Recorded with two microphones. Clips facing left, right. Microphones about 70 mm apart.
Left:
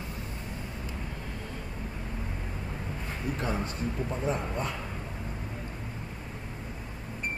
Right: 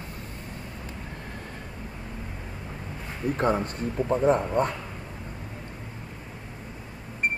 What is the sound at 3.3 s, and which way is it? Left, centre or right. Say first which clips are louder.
Speech: right 9 dB; right.